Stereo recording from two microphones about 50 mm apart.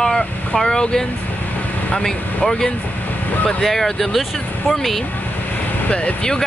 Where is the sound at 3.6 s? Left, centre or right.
Centre.